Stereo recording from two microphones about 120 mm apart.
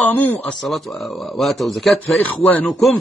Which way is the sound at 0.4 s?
5° left (ahead or behind).